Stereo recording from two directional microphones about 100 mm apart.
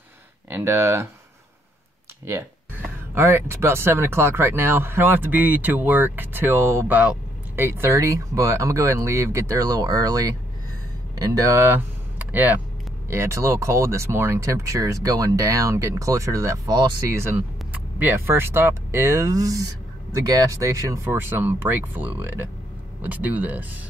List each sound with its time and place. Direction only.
0.5 s speech: 25° right (ahead or behind)
3.2 s speech: 25° right (ahead or behind); by 11.5 s 40° right (ahead or behind)
11.5 s speech: 20° right (ahead or behind)
13.1 s speech: 25° right (ahead or behind)
17.9 s speech: 20° right (ahead or behind)
21.0 s speech: 20° right (ahead or behind)